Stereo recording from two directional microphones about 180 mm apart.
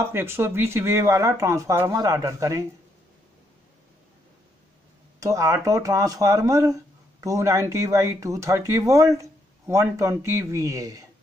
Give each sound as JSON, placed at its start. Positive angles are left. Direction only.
{"t": 0.0, "sound": "speech", "side_deg": -15}
{"t": 5.2, "sound": "speech", "side_deg": -15}